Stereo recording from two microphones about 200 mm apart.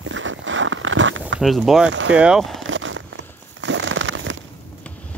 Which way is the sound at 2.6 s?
75° right (ahead or behind).